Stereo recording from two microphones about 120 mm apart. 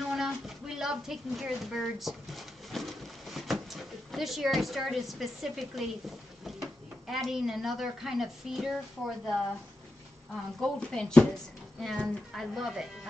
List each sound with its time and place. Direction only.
0.1 s a sound: 5° right (ahead or behind)
7.1 s a woman's voice: centre (ahead or behind)
10.6 s a woman's voice: 5° left (ahead or behind)